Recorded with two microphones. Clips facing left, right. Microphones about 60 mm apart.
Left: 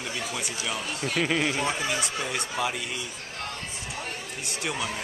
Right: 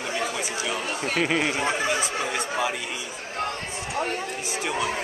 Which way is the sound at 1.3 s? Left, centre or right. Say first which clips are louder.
Right 2 dB; right.